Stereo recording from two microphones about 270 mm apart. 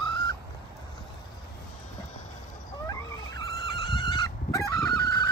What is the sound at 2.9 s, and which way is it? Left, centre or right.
Wild animals, centre.